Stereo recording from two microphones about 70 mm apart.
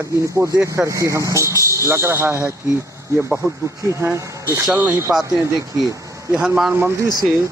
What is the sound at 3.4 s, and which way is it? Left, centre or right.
Speech, right.